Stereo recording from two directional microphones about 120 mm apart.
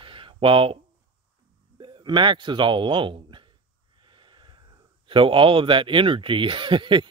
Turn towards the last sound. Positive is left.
turn(degrees=-40)  # may be behind; listen again after turning